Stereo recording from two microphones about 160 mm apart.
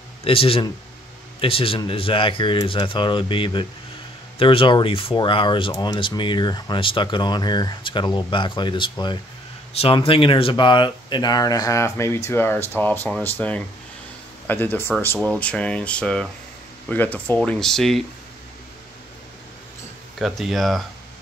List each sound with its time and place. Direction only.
0.2 s speech: 35° left (ahead or behind); by 18.0 s centre (ahead or behind)
20.2 s speech: centre (ahead or behind)